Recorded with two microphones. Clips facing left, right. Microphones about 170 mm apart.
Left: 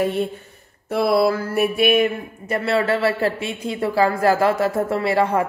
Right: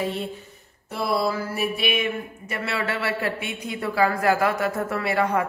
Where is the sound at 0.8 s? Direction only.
65° left (ahead or behind).